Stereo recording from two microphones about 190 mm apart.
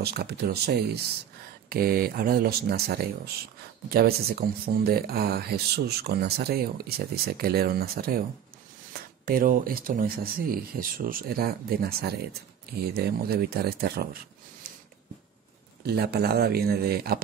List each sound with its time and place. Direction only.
0.0 s speech: 55° right (ahead or behind)
9.2 s speech: 50° right (ahead or behind)
15.8 s speech: 55° right (ahead or behind)